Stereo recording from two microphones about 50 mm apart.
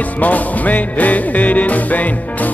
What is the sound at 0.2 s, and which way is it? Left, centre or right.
Music, left.